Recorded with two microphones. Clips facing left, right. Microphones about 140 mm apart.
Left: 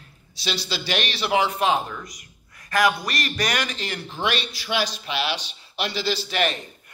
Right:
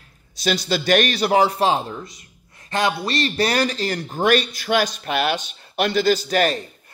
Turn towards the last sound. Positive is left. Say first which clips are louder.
# right 4 dB
turn(degrees=-35)  # may be behind; listen again after turning